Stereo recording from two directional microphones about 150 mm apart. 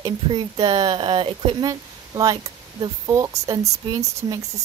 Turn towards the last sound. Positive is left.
turn(degrees=-25)  # may be behind; listen again after turning